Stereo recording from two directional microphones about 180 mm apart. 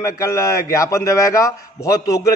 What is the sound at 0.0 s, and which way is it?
A man's voice, 15° left (ahead or behind).